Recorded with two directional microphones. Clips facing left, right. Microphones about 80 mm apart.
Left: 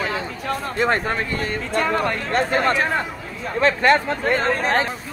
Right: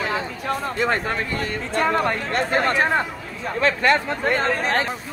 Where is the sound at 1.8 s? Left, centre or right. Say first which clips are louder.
Right 1 dB; right.